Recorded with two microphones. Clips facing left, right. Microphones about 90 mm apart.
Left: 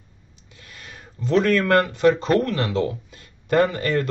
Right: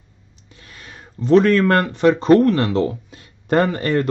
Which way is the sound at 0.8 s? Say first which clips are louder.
Right 8 dB; 30° right (ahead or behind).